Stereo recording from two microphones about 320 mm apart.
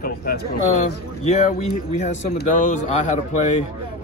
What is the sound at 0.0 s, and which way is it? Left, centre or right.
Speech, left.